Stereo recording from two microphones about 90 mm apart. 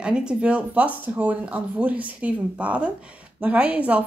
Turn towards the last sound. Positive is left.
turn(degrees=-15)  # may be behind; listen again after turning